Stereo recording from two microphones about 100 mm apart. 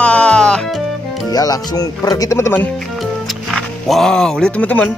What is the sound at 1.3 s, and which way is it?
Speech, 40° left (ahead or behind).